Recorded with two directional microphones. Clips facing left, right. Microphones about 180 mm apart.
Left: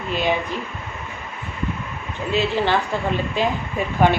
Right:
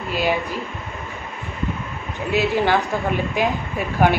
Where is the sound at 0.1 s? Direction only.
5° right (ahead or behind).